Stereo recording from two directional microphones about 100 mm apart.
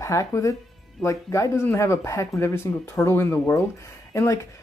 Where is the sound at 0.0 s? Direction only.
30° left (ahead or behind).